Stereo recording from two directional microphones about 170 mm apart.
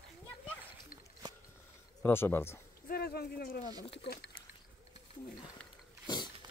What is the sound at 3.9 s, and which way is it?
Speech, 80° left.